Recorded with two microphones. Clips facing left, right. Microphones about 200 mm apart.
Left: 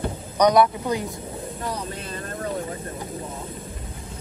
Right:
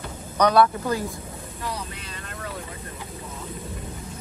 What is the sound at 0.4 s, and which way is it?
Speech, 15° left (ahead or behind).